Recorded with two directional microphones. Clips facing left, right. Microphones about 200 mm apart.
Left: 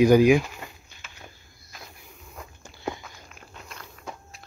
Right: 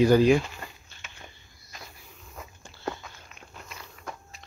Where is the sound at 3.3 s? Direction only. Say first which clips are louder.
Left 1 dB; centre (ahead or behind).